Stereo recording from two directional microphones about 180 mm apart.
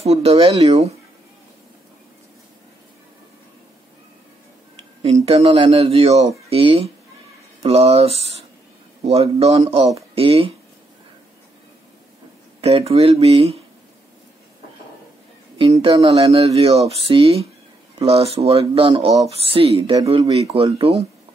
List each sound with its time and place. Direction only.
0.0 s speech: 35° right (ahead or behind)
5.0 s speech: 35° right (ahead or behind)
12.5 s speech: 35° right (ahead or behind)
15.5 s speech: 30° right (ahead or behind)
19.8 s speech: 20° right (ahead or behind)
20.1 s speech: 30° right (ahead or behind)